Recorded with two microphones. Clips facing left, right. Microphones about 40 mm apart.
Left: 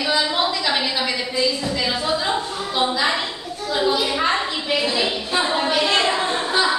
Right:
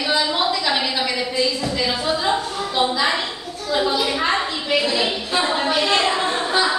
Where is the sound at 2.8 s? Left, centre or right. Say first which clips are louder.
Right 1 dB; centre.